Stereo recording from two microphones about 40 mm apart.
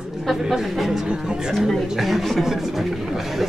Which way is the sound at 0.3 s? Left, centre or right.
Centre.